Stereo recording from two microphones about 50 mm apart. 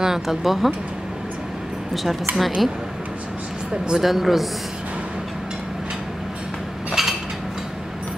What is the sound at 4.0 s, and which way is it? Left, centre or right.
Speech, centre.